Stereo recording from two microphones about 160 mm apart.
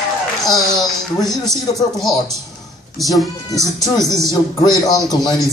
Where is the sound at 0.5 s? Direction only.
Centre (ahead or behind).